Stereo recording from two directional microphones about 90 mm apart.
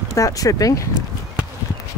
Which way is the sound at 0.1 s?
40° left (ahead or behind).